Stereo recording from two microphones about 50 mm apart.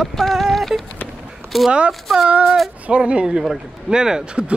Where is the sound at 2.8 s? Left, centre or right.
Right.